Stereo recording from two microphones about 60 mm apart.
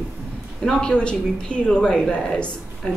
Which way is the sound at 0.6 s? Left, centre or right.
Centre.